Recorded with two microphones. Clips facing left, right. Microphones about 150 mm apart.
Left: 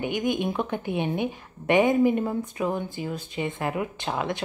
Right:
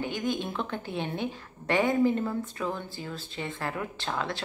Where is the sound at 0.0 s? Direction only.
20° left (ahead or behind).